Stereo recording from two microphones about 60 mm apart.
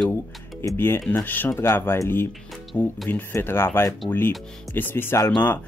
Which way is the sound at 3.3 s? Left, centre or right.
Left.